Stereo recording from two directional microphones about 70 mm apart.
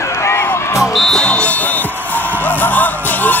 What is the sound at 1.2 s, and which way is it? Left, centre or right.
Music, centre.